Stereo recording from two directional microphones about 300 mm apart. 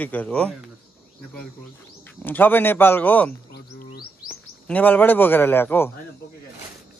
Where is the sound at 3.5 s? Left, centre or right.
Left.